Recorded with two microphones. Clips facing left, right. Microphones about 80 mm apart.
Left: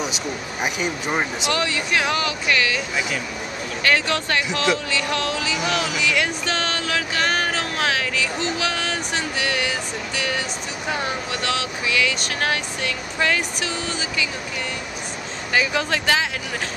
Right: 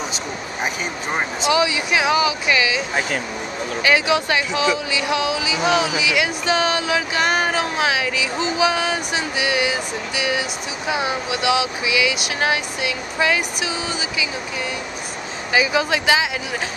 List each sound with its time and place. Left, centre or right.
1.5 s speech: centre
2.9 s speech: right
3.8 s speech: centre
15.5 s speech: centre